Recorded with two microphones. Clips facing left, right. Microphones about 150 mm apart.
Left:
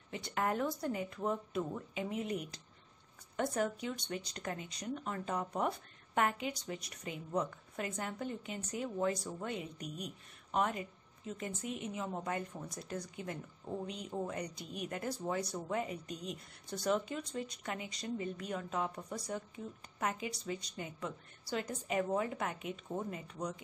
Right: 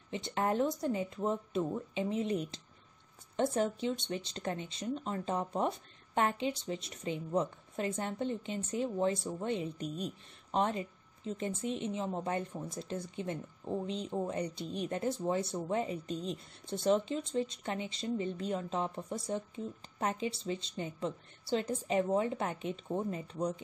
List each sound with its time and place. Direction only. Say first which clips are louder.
0.1 s speech: right 3 dB; 25° right (ahead or behind)